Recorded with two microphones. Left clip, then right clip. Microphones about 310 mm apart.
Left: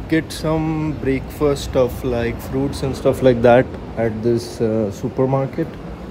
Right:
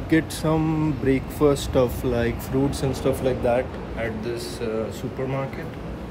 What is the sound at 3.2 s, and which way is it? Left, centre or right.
Speech, left.